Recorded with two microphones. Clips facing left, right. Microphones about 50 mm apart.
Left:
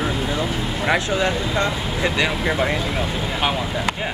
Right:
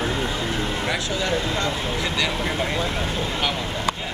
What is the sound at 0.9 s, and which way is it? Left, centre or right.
Speech, left.